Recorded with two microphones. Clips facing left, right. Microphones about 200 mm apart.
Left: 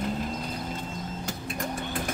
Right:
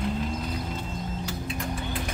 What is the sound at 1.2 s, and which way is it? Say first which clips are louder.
Vehicle: right 2 dB; 45° left (ahead or behind).